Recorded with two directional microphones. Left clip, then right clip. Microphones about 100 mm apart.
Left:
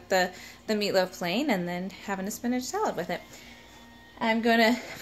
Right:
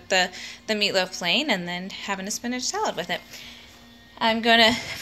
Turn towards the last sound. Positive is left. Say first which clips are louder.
# right 5 dB
turn(degrees=35)  # may be behind; listen again after turning